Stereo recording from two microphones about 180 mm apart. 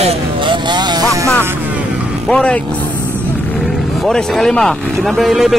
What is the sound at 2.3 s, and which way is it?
Speech, 5° left (ahead or behind).